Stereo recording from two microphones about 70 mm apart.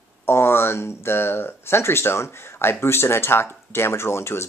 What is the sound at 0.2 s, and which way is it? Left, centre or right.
Speech, left.